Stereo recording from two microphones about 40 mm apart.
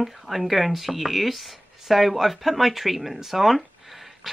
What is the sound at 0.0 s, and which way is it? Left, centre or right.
Speech, centre.